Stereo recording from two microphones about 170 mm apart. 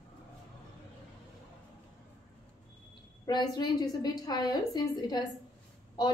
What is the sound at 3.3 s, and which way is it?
A woman's voice, 25° left (ahead or behind).